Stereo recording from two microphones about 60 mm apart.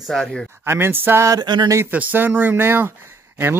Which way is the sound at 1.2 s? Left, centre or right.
Right.